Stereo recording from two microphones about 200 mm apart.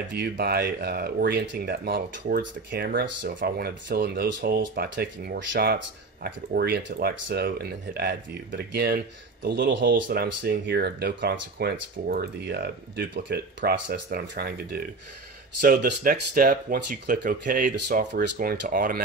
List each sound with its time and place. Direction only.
0.2 s speech: 55° right (ahead or behind)
15.6 s speech: 40° right (ahead or behind)